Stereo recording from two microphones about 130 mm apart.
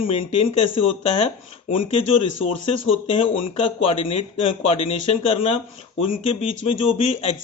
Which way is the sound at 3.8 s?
50° left (ahead or behind).